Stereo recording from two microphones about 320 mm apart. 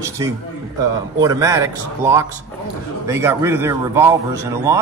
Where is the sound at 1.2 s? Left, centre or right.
Centre.